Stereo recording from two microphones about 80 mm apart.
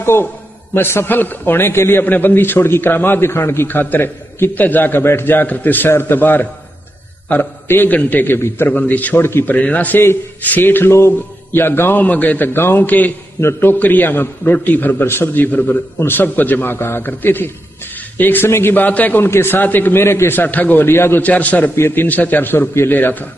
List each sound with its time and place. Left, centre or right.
0.0 s a man's voice: left
9.6 s a man's voice: centre